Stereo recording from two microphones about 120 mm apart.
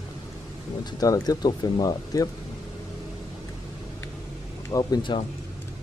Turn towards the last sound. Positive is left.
turn(degrees=35)  # may be behind; listen again after turning